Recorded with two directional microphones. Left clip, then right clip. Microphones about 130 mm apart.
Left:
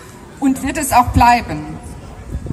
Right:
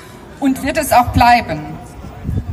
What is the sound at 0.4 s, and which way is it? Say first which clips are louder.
A woman's voice: right 2 dB; 35° right (ahead or behind).